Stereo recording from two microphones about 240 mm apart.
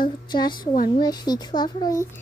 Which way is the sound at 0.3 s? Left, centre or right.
Centre.